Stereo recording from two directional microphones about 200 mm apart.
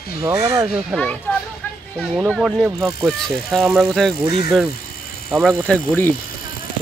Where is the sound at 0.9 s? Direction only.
5° left (ahead or behind).